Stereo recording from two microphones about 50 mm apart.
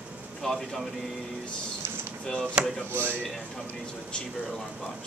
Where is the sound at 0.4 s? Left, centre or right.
Centre.